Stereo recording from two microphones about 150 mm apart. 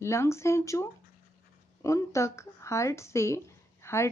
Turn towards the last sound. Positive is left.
turn(degrees=20)  # may be behind; listen again after turning